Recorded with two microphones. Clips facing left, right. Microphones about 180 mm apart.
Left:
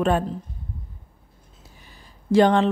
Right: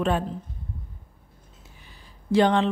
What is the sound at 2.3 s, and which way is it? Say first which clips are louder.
Speech: left 3 dB; 45° left (ahead or behind).